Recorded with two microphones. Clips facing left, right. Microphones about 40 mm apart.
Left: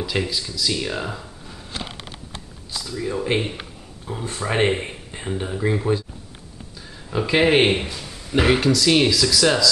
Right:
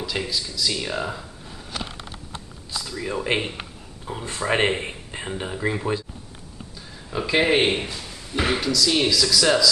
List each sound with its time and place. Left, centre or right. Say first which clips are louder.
0.0 s a man's voice: left 3 dB; centre
2.9 s speech: left 2 dB; centre
7.1 s a man's voice: left 3 dB; centre
8.3 s speech: left 5 dB; left
9.0 s speech: left 2 dB; centre